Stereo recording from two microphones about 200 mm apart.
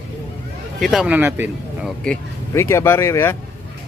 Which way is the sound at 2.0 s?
10° left (ahead or behind).